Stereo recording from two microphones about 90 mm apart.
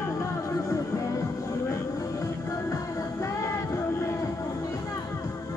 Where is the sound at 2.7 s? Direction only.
35° left (ahead or behind).